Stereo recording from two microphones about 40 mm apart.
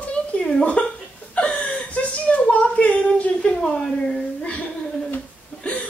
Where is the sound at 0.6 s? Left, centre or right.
Left.